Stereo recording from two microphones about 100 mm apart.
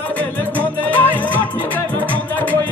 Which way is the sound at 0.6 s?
15° left (ahead or behind).